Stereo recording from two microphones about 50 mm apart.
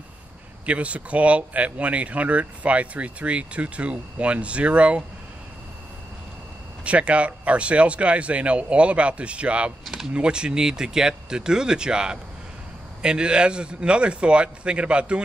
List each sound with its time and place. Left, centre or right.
0.7 s speech: right
6.8 s speech: right
9.8 s speech: centre
10.1 s speech: centre